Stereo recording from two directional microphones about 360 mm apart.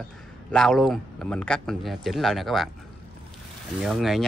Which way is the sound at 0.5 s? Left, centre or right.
Centre.